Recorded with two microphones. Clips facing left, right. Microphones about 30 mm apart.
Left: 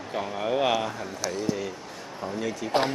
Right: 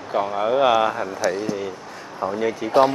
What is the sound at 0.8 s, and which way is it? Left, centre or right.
Speech, right.